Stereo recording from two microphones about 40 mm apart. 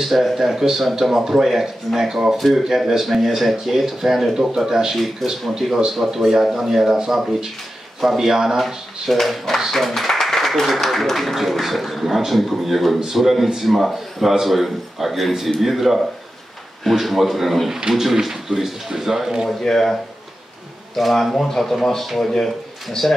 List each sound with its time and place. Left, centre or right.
0.0 s speech: centre
5.2 s speech: centre
8.0 s speech: centre
17.7 s speech: centre
19.6 s speech: centre